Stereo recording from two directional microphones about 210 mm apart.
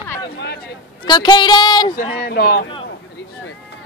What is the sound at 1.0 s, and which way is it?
Speech, 20° left (ahead or behind).